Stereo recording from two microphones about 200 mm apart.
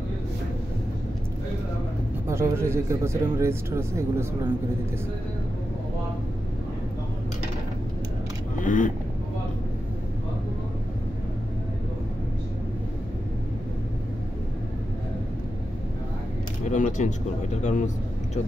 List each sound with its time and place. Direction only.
2.2 s a man's voice: 15° right (ahead or behind)
8.5 s speech: 40° left (ahead or behind)
16.6 s a man's voice: 35° left (ahead or behind)